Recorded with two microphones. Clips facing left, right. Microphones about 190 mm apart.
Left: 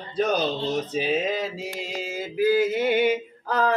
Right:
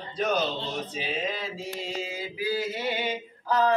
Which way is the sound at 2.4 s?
50° left (ahead or behind).